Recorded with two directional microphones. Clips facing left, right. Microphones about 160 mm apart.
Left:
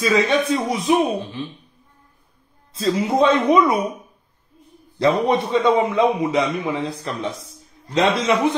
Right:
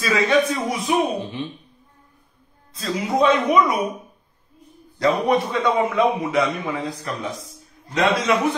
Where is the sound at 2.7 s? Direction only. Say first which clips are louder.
Left 3 dB; 25° left (ahead or behind).